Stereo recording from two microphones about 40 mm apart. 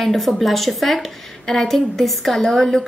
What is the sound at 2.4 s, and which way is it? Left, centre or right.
Speech, centre.